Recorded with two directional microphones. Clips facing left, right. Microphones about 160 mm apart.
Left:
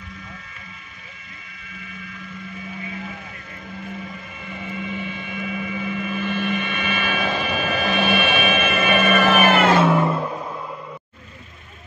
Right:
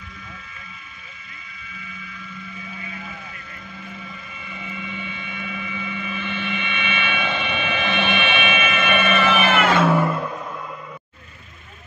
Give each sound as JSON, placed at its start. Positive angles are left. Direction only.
{"t": 4.4, "sound": "vehicle", "side_deg": 45}
{"t": 9.8, "sound": "a sound", "side_deg": 0}
{"t": 10.2, "sound": "music", "side_deg": 20}